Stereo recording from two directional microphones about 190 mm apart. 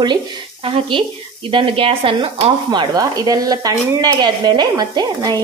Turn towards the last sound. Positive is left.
turn(degrees=-20)  # may be behind; listen again after turning